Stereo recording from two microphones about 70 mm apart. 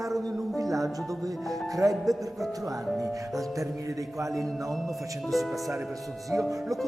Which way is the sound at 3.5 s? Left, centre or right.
Right.